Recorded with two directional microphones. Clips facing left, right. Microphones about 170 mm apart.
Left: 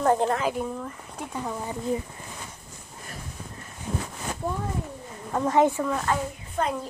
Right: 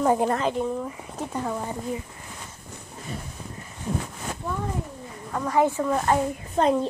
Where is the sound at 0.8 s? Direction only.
5° right (ahead or behind).